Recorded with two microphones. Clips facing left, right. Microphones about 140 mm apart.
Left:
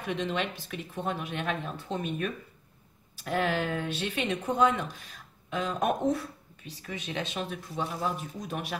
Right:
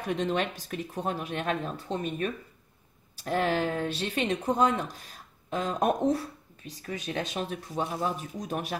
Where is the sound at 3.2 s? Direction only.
40° right (ahead or behind).